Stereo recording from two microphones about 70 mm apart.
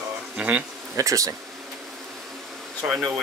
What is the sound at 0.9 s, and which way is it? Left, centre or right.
Speech, right.